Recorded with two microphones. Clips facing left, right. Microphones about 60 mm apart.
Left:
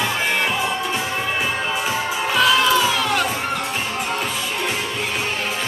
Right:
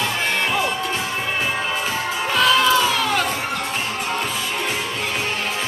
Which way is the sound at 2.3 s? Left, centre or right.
Centre.